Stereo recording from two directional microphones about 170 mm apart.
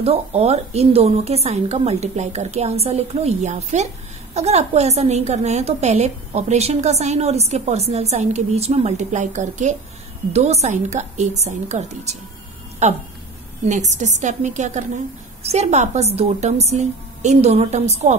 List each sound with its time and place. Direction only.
0.0 s a woman's voice: 35° right (ahead or behind)
13.7 s a woman's voice: 45° right (ahead or behind)